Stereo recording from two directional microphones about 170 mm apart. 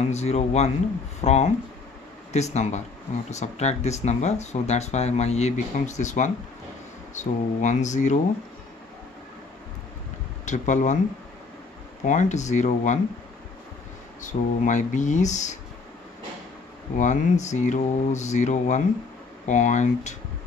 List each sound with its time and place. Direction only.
0.0 s speech: 40° left (ahead or behind)
10.4 s speech: 45° left (ahead or behind)
12.0 s speech: 45° left (ahead or behind)
14.2 s speech: 45° left (ahead or behind)
17.0 s speech: 45° left (ahead or behind)